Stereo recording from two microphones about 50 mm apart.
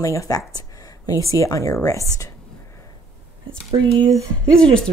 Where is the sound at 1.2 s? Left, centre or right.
Left.